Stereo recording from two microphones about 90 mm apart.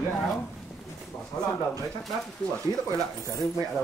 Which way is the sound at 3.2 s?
40° left (ahead or behind).